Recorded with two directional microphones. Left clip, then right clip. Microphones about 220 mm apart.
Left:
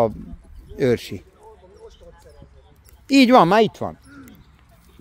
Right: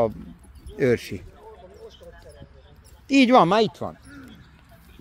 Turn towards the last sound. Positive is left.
turn(degrees=30)  # may be behind; listen again after turning